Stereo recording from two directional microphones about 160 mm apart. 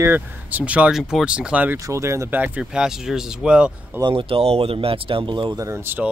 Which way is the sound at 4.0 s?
30° right (ahead or behind).